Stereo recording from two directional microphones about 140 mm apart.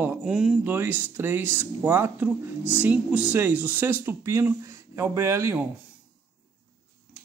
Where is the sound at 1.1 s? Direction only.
15° right (ahead or behind).